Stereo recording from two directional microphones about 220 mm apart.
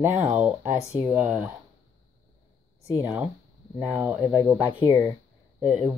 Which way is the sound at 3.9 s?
5° right (ahead or behind).